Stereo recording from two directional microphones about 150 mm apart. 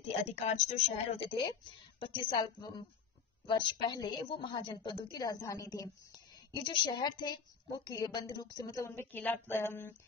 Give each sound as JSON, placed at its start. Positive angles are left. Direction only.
{"t": 0.4, "sound": "a woman's voice", "side_deg": 45}